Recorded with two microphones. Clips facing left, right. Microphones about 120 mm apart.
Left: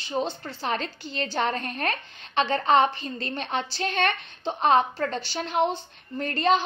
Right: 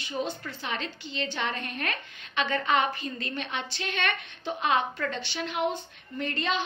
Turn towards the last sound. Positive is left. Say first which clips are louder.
# left 7 dB
turn(degrees=40)  # may be behind; listen again after turning